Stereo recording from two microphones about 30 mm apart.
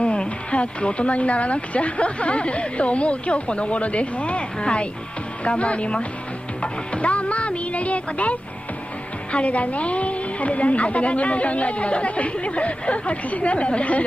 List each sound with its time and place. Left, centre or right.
0.0 s a woman's voice: left